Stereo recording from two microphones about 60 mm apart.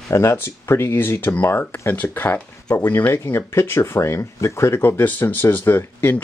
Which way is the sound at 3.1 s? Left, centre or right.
Left.